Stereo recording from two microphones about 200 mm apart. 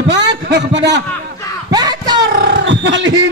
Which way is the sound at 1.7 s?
20° right (ahead or behind).